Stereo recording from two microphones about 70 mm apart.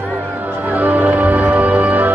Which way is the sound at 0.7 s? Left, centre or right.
Right.